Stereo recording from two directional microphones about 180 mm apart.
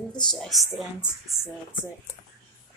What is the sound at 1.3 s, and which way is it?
Speech, 20° right (ahead or behind).